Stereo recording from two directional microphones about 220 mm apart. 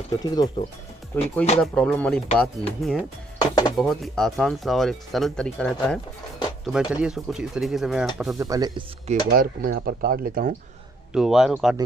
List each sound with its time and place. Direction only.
0.2 s speech: 20° left (ahead or behind); by 3.1 s centre (ahead or behind)
3.3 s speech: 20° left (ahead or behind)
3.7 s speech: centre (ahead or behind)
8.4 s speech: 15° right (ahead or behind)
9.0 s speech: 35° right (ahead or behind)
11.1 s speech: centre (ahead or behind)